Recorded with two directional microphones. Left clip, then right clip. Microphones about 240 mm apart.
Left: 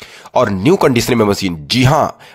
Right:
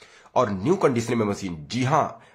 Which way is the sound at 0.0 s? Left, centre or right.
Left.